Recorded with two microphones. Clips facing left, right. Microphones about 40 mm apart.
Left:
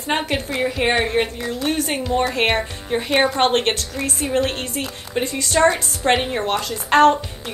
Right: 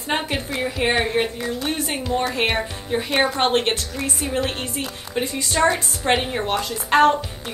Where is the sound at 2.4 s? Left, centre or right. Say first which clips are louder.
Left 2 dB; left.